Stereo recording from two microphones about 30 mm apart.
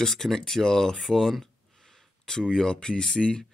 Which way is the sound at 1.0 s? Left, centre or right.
Centre.